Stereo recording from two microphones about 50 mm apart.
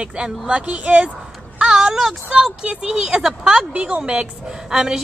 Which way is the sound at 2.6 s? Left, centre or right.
Right.